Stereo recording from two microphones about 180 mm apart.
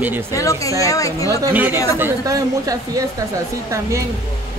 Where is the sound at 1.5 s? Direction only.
10° right (ahead or behind).